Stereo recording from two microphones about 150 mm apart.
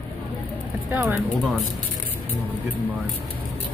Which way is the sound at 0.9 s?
10° right (ahead or behind).